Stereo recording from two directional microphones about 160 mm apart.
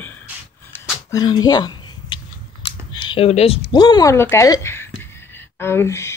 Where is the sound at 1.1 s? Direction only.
25° left (ahead or behind).